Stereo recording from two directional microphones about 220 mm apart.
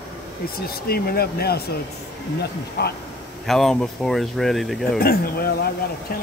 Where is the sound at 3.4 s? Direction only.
Centre (ahead or behind).